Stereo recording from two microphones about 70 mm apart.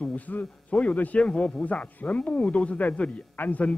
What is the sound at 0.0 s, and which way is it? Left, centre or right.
A man's voice, left.